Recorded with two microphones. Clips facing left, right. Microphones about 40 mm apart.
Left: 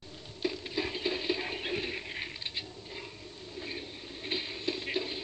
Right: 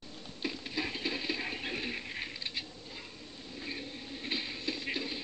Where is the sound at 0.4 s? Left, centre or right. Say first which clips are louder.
Left 3 dB; centre.